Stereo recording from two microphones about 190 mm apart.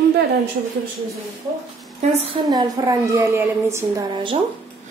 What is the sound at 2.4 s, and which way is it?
A woman's voice, 20° right (ahead or behind).